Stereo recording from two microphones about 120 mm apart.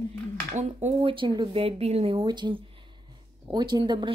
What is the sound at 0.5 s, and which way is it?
Speech, 75° right (ahead or behind).